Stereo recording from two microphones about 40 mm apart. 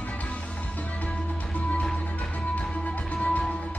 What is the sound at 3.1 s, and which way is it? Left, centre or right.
Music, left.